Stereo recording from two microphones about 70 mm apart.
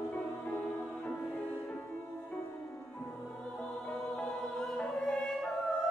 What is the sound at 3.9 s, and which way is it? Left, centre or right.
Music, centre.